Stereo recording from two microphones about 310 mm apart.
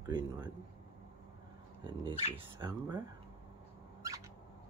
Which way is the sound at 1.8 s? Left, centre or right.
Centre.